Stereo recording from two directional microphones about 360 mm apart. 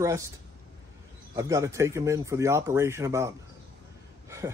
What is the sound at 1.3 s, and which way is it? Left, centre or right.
Speech, centre.